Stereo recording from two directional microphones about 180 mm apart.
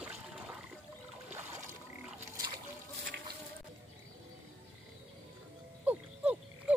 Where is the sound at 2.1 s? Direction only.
20° right (ahead or behind).